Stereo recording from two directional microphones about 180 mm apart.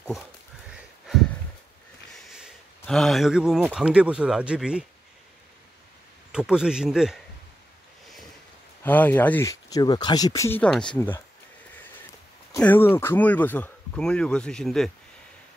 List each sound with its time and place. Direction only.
2.1 s speech: centre (ahead or behind)
6.3 s a man's voice: 5° right (ahead or behind)
8.8 s speech: 10° left (ahead or behind)
12.5 s speech: 10° left (ahead or behind)